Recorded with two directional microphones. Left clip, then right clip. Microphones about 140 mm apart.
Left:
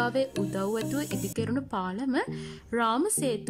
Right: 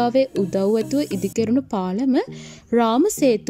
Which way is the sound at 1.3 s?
30° right (ahead or behind).